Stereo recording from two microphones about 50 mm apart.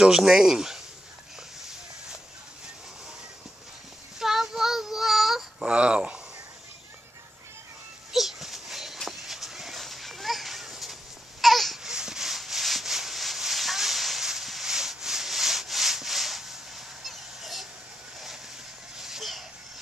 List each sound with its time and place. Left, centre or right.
0.0 s speech: centre
4.2 s child singing: centre
5.7 s speech: centre
8.1 s a sound: centre
11.8 s rub: centre
18.9 s a sound: centre